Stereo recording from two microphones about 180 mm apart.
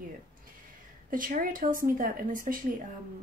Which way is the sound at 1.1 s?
50° right (ahead or behind).